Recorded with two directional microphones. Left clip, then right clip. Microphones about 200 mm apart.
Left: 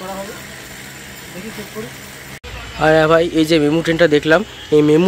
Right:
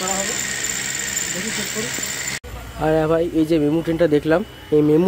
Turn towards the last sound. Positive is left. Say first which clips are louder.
# left 4 dB
turn(degrees=-5)  # may be behind; listen again after turning